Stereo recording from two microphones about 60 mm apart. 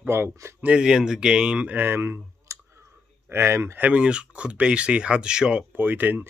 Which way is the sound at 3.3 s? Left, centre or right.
Right.